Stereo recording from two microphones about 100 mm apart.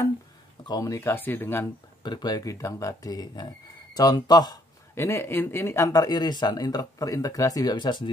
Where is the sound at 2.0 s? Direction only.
45° left (ahead or behind).